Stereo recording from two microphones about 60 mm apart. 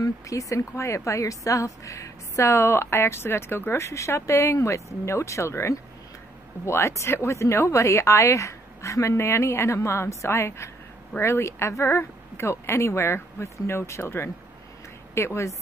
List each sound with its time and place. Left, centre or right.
0.0 s a woman's voice: left